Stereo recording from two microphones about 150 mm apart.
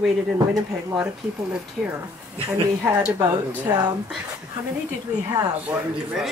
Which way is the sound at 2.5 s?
15° right (ahead or behind).